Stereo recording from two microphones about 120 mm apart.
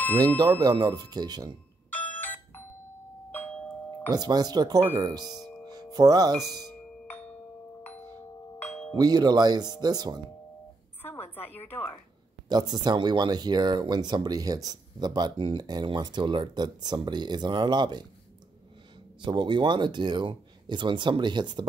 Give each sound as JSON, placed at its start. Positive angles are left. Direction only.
{"t": 0.6, "sound": "speech", "side_deg": -35}
{"t": 1.9, "sound": "ringtone", "side_deg": 15}
{"t": 4.1, "sound": "speech", "side_deg": -35}
{"t": 5.7, "sound": "music", "side_deg": -35}
{"t": 7.1, "sound": "doorbell", "side_deg": 15}
{"t": 8.5, "sound": "doorbell", "side_deg": 15}
{"t": 8.9, "sound": "speech", "side_deg": -35}
{"t": 11.0, "sound": "a sound", "side_deg": 15}
{"t": 12.4, "sound": "speech", "side_deg": -35}
{"t": 19.2, "sound": "speech", "side_deg": -40}